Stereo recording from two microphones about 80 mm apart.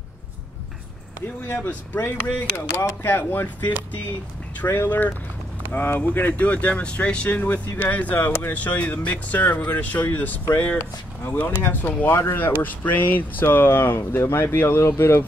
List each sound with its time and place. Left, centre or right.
1.5 s speech: left